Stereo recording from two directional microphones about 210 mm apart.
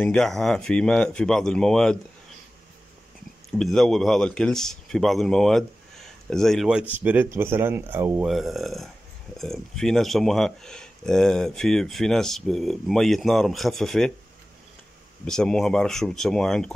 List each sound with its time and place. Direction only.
0.0 s speech: 5° left (ahead or behind)
3.4 s speech: centre (ahead or behind)
15.2 s speech: 5° left (ahead or behind)